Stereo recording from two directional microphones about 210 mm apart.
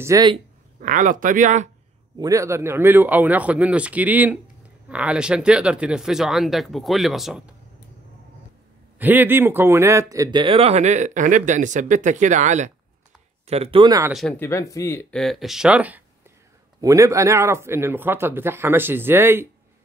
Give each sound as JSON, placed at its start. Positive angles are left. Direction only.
{"t": 0.0, "sound": "speech", "side_deg": -20}
{"t": 0.7, "sound": "speech", "side_deg": -40}
{"t": 2.1, "sound": "speech", "side_deg": -15}
{"t": 8.9, "sound": "speech", "side_deg": -10}
{"t": 14.1, "sound": "speech", "side_deg": 5}